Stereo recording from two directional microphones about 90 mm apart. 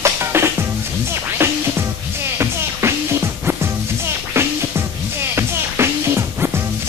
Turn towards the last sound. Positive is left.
turn(degrees=-25)  # may be behind; listen again after turning